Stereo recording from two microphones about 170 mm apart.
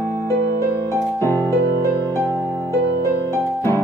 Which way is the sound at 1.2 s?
15° left (ahead or behind).